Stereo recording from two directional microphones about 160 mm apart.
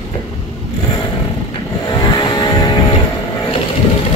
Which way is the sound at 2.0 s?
30° left (ahead or behind).